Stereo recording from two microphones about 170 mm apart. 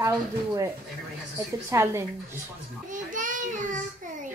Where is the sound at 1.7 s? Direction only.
15° right (ahead or behind).